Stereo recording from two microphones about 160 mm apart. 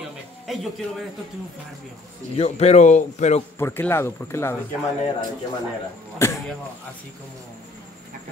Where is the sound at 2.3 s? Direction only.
40° left (ahead or behind).